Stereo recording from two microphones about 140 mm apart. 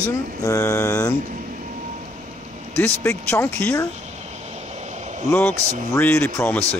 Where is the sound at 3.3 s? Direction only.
15° left (ahead or behind).